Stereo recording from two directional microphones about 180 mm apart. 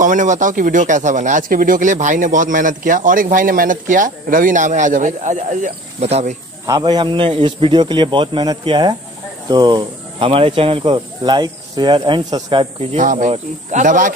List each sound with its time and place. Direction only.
0.0 s speech: 45° right (ahead or behind)
6.6 s speech: 20° right (ahead or behind)
12.9 s speech: 45° right (ahead or behind)